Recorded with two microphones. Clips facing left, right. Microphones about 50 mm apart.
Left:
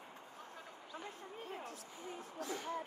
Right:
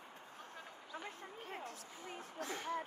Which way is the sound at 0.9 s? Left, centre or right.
Right.